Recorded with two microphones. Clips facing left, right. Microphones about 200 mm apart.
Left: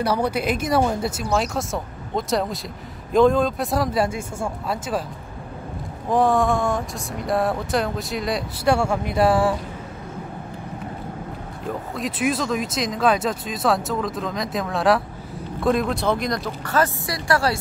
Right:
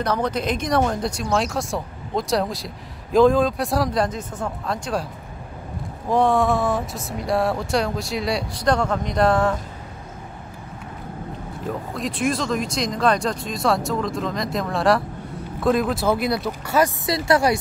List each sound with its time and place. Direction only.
0.0 s speech: 10° left (ahead or behind)
6.0 s speech: centre (ahead or behind)
11.6 s speech: centre (ahead or behind)
17.0 s a woman's voice: 20° right (ahead or behind)